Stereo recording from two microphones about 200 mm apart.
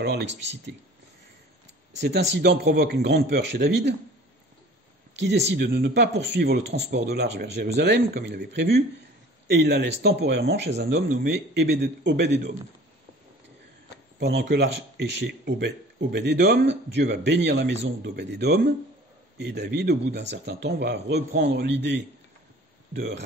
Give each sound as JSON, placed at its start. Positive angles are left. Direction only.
{"t": 0.0, "sound": "speech", "side_deg": -60}
{"t": 2.0, "sound": "speech", "side_deg": -60}
{"t": 5.2, "sound": "speech", "side_deg": -60}
{"t": 14.2, "sound": "speech", "side_deg": -60}